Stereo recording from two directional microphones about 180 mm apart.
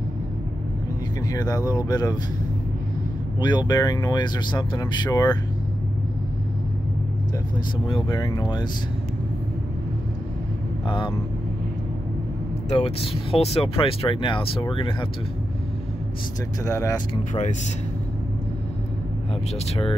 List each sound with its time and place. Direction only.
1.3 s speech: 20° left (ahead or behind)
3.3 s speech: 25° left (ahead or behind)
8.1 s speech: 20° left (ahead or behind)
10.9 s speech: 25° left (ahead or behind)
12.6 s speech: 35° left (ahead or behind)
16.6 s speech: 15° left (ahead or behind)
17.3 s speech: 45° left (ahead or behind)
19.7 s speech: 30° left (ahead or behind)